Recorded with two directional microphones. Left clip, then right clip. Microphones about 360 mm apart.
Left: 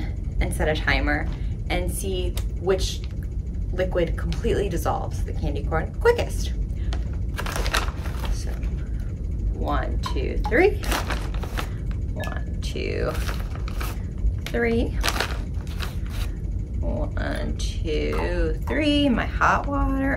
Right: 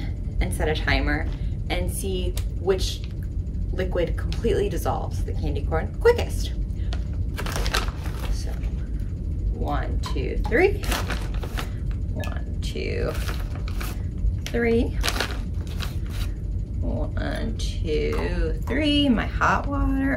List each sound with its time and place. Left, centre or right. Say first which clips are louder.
0.4 s a woman's voice: left 2 dB; centre
7.3 s a sound: left 1 dB; centre
9.7 s speech: left 3 dB; centre
12.2 s a sound: left 2 dB; centre
14.5 s speech: right 1 dB; centre
17.2 s speech: left 1 dB; centre